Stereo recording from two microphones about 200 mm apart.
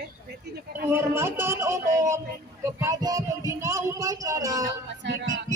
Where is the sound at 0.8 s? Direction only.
10° right (ahead or behind).